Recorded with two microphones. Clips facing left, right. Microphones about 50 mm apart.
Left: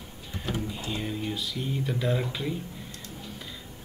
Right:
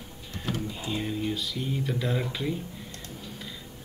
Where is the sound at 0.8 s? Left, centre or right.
Centre.